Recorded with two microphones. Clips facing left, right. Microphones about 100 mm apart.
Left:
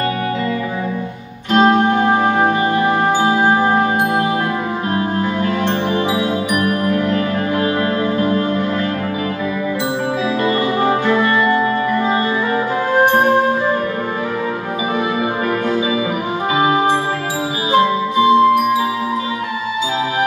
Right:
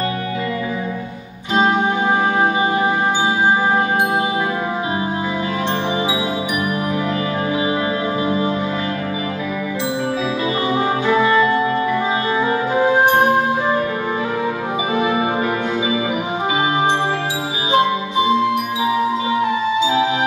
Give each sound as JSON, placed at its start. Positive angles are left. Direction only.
{"t": 1.5, "sound": "music", "side_deg": -15}
{"t": 6.6, "sound": "music", "side_deg": 60}